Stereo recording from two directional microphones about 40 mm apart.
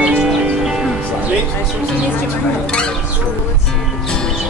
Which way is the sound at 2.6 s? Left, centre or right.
Left.